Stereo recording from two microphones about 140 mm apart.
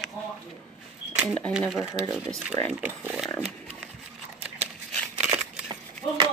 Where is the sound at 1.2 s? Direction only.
10° left (ahead or behind); by 3.3 s 10° right (ahead or behind).